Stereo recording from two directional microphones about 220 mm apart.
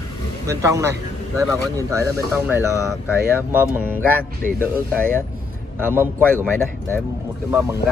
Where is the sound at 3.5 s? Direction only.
10° right (ahead or behind).